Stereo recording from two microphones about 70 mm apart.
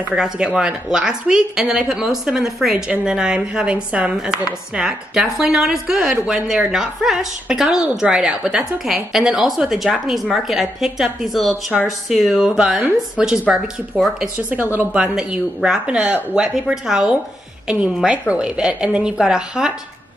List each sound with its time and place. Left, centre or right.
0.1 s chopping: centre
9.6 s a woman's voice: centre
12.1 s chopping: centre
14.3 s a woman's voice: right
14.9 s chopping: centre